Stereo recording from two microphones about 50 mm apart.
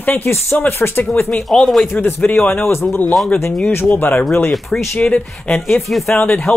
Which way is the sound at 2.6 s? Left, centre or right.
Left.